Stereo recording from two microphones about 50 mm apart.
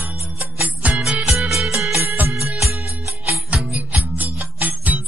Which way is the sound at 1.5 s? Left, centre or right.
Centre.